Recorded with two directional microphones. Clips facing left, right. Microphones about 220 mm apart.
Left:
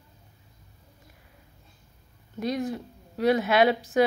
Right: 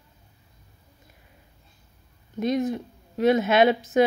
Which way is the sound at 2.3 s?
20° right (ahead or behind).